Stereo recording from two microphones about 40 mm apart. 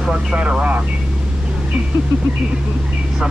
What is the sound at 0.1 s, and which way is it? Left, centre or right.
Speech, right.